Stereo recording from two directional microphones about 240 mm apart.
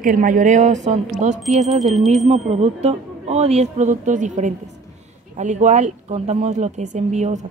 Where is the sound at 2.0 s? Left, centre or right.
Right.